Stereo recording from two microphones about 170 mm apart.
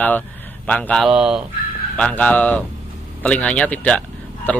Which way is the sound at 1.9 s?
5° left (ahead or behind).